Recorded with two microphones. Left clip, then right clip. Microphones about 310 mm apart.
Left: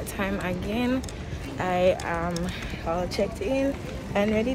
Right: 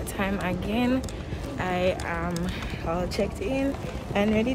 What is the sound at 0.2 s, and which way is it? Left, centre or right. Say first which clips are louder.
Speech: right 1 dB; centre.